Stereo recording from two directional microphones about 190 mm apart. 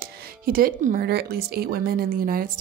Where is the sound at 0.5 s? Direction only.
50° right (ahead or behind).